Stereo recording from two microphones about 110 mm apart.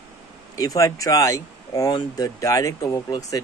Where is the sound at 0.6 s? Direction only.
30° left (ahead or behind).